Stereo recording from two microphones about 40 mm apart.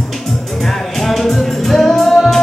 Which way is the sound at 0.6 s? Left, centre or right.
Centre.